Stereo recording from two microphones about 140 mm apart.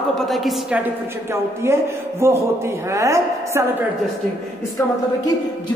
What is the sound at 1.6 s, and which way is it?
A woman's voice, 20° right (ahead or behind).